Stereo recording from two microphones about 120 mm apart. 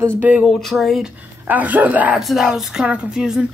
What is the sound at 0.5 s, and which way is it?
Speech, centre (ahead or behind).